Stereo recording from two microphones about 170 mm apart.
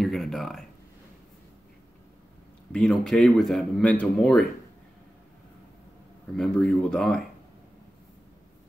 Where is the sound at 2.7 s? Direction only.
5° left (ahead or behind).